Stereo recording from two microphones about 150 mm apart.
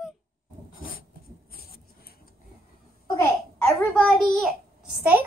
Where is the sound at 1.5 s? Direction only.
85° left.